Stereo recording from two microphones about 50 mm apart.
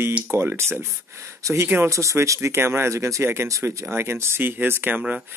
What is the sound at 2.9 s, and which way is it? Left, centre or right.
Speech, right.